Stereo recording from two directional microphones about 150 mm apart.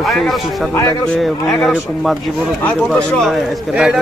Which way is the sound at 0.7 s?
20° left (ahead or behind).